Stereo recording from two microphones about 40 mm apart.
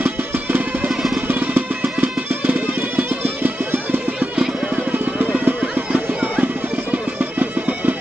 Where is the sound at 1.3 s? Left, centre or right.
Right.